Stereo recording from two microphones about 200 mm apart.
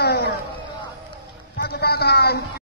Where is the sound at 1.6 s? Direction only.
50° left (ahead or behind).